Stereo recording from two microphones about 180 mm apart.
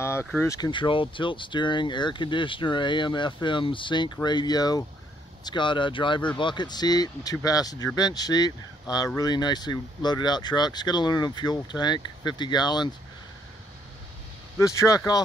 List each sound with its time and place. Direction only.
0.0 s a sound: 15° left (ahead or behind)
0.5 s speech: 25° left (ahead or behind)
14.6 s speech: 15° left (ahead or behind)